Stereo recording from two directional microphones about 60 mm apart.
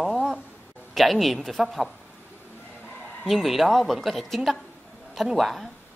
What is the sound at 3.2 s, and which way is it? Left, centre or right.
A woman's voice, centre.